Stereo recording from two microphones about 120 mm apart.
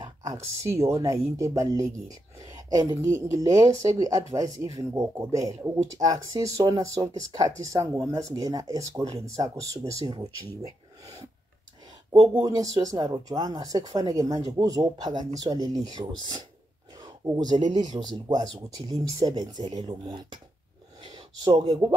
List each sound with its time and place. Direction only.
0.0 s speech: 35° right (ahead or behind)
12.4 s speech: 30° right (ahead or behind)
21.0 s a sound: 40° right (ahead or behind)